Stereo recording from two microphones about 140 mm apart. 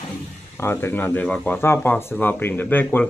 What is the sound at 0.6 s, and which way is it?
Speech, 15° left (ahead or behind).